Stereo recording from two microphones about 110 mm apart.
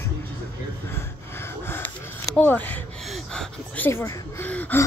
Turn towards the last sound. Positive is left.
turn(degrees=15)  # may be behind; listen again after turning